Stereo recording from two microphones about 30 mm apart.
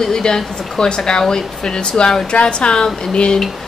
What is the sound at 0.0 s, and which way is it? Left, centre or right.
A woman's voice, left.